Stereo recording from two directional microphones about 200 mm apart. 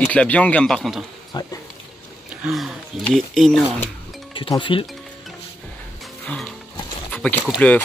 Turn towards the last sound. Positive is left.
turn(degrees=5)  # may be behind; listen again after turning